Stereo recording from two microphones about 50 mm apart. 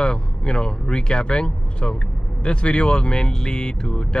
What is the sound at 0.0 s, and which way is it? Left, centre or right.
Speech, centre.